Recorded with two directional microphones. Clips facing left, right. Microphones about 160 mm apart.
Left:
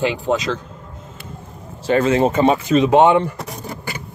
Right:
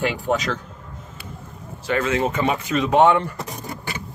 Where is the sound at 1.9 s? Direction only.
35° left (ahead or behind).